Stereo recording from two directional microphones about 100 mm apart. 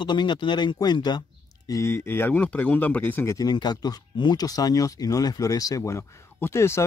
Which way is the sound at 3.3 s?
45° left (ahead or behind).